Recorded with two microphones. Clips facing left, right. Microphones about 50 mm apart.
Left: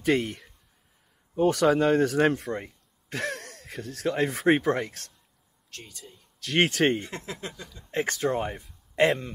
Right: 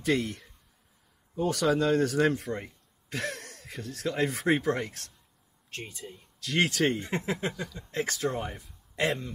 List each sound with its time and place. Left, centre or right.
0.0 s speech: left
5.7 s speech: right
6.4 s speech: left
7.1 s speech: right
7.9 s speech: left
9.0 s speech: left